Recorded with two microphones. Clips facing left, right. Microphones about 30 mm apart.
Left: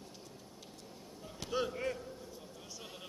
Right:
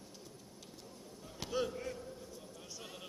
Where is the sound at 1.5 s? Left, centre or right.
Centre.